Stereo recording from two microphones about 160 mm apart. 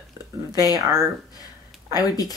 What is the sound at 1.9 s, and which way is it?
Speech, 25° left (ahead or behind).